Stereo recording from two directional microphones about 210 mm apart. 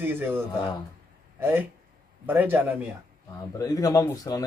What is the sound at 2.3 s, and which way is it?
Speech, 10° right (ahead or behind).